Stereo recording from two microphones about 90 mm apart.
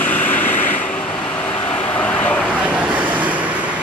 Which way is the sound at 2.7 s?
15° right (ahead or behind).